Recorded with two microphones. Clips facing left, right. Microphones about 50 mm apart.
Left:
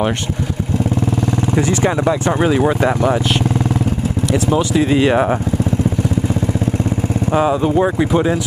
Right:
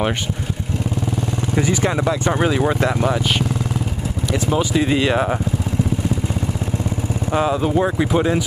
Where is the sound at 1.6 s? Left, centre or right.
Centre.